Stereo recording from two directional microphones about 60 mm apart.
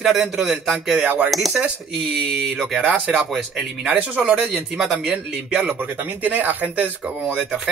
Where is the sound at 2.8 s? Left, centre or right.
Right.